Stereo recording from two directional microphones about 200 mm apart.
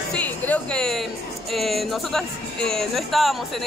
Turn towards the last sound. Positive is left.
turn(degrees=0)  # may be behind; listen again after turning